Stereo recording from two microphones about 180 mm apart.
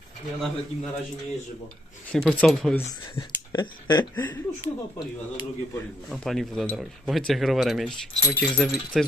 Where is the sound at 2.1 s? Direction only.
Centre (ahead or behind).